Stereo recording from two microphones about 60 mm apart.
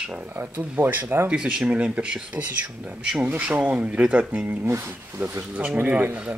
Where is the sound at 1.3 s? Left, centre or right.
Centre.